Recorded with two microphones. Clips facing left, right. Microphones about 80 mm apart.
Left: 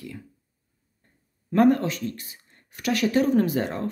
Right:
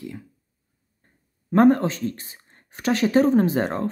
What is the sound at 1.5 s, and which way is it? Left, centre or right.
Speech, right.